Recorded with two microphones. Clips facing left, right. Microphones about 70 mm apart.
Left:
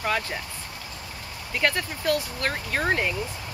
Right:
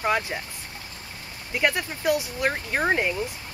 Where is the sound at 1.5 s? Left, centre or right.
Centre.